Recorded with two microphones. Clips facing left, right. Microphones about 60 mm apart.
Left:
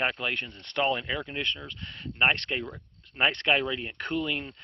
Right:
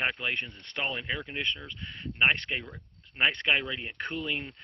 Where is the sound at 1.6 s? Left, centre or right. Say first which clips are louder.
Even; centre.